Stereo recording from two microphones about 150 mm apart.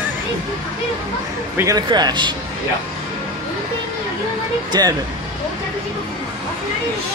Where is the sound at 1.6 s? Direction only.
25° right (ahead or behind).